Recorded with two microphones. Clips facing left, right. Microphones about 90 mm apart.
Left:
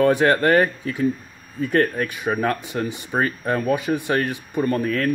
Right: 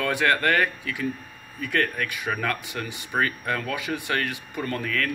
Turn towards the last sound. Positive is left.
turn(degrees=25)  # may be behind; listen again after turning